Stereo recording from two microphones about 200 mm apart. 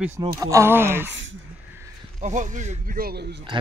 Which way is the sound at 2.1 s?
35° right (ahead or behind).